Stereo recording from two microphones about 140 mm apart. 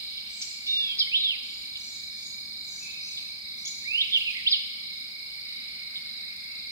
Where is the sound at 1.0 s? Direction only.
20° right (ahead or behind).